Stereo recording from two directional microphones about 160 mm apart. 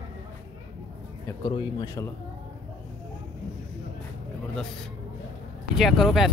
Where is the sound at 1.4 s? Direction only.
30° left (ahead or behind).